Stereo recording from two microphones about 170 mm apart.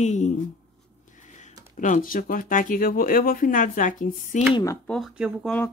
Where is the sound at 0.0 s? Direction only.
45° left (ahead or behind).